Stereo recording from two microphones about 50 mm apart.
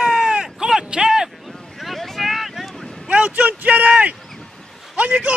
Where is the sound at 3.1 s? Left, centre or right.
Right.